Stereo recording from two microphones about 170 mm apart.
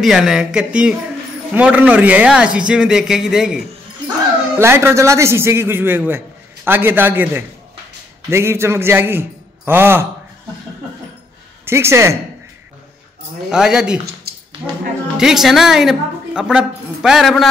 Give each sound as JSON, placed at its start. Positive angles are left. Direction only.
{"t": 0.0, "sound": "speech", "side_deg": 0}
{"t": 4.6, "sound": "a man's voice", "side_deg": -15}
{"t": 11.6, "sound": "speech", "side_deg": -15}
{"t": 13.5, "sound": "speech", "side_deg": -5}
{"t": 15.1, "sound": "a woman's voice", "side_deg": -5}